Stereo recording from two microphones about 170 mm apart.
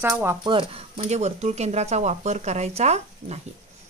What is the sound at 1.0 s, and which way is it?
Speech, 40° right (ahead or behind).